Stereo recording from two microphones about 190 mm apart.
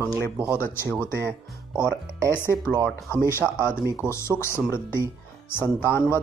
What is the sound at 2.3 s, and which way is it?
Speech, 10° left (ahead or behind).